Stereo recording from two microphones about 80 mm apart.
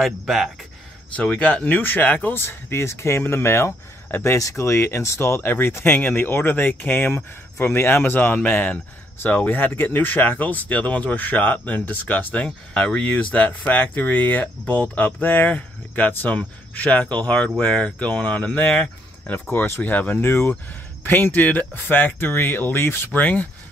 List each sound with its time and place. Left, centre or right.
0.0 s speech: centre
1.1 s speech: centre
19.5 s speech: left